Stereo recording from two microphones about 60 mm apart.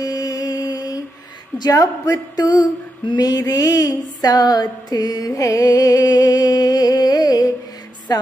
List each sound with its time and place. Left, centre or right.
0.0 s mantra: left
1.7 s a sound: left
8.1 s music: left